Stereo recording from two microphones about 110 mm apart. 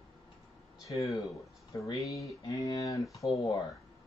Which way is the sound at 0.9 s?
30° left (ahead or behind).